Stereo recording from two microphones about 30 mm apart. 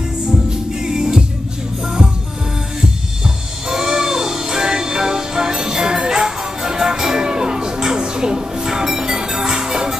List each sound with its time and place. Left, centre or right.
0.5 s music: right
3.6 s music: centre